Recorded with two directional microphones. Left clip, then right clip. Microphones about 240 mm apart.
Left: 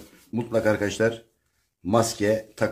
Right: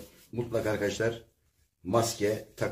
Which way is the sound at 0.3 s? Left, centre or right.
Left.